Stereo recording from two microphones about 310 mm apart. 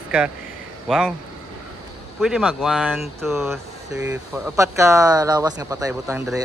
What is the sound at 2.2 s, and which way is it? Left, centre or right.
Speech, centre.